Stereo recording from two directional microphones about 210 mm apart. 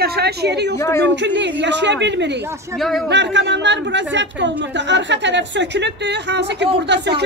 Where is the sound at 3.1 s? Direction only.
55° right (ahead or behind).